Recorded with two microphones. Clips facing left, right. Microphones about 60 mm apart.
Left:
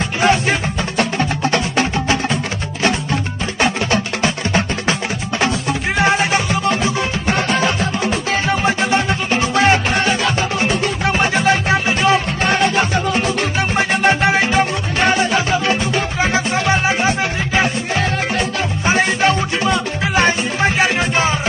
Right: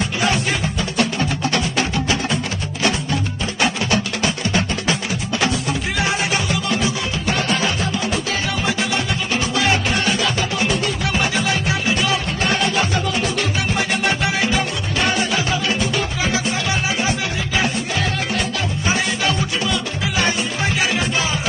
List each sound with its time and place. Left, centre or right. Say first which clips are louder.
0.2 s music: left 6 dB; left
18.9 s music: left 6 dB; left